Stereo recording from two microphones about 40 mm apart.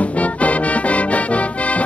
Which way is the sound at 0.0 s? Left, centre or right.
Left.